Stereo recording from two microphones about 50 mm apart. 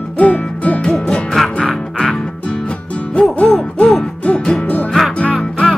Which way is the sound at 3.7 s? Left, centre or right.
Centre.